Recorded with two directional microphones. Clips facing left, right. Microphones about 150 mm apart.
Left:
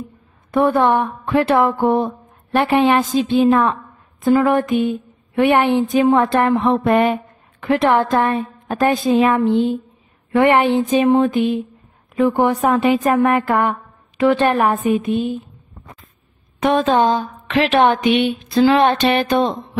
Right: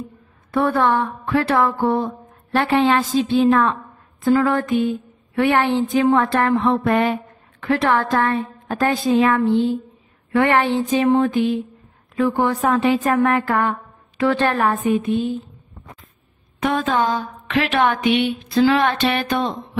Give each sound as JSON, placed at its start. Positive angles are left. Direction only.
{"t": 0.5, "sound": "a woman's voice", "side_deg": 20}
{"t": 16.6, "sound": "speech", "side_deg": 30}